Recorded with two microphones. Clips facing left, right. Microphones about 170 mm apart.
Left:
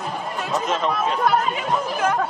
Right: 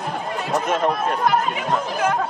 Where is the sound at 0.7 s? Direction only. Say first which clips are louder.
Right 2 dB; 50° right (ahead or behind).